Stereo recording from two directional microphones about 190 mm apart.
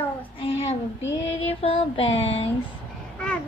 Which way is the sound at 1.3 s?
30° left (ahead or behind).